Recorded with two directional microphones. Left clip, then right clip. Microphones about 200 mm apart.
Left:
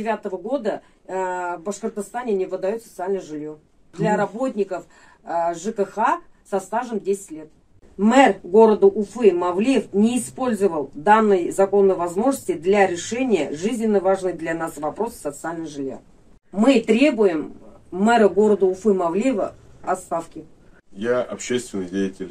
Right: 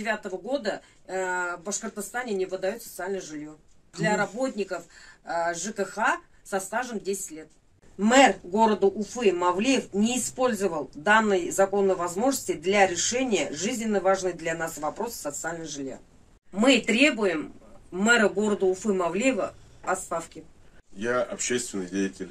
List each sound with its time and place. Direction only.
0.0 s speech: 25° right (ahead or behind)
8.0 s a woman's voice: 20° right (ahead or behind)
21.0 s speech: 10° right (ahead or behind)